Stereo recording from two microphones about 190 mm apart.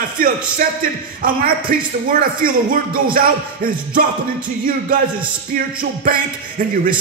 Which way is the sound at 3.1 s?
50° right (ahead or behind).